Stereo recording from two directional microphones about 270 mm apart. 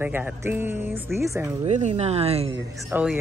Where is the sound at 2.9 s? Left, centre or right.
Centre.